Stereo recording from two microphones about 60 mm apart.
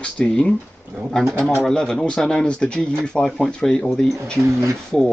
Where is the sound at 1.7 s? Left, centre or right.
Centre.